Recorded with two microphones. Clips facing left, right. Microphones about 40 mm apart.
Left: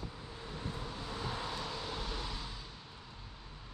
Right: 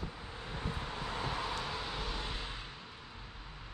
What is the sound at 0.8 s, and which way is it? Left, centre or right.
Vehicle, right.